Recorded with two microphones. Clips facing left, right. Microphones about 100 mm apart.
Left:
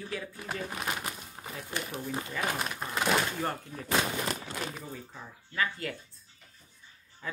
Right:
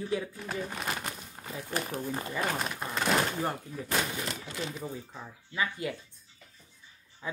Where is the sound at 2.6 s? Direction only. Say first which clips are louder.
Even; centre (ahead or behind).